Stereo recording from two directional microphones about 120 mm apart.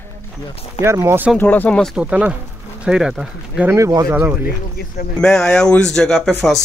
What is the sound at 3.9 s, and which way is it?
Speech, 30° right (ahead or behind).